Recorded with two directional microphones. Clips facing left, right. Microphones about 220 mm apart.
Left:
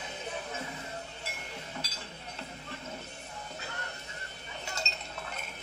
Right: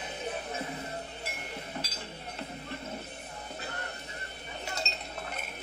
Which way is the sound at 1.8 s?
35° right (ahead or behind).